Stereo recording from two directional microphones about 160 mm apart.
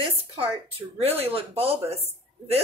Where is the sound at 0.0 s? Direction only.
35° right (ahead or behind).